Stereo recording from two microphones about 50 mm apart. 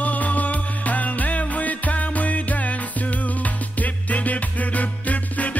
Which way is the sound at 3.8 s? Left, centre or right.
Left.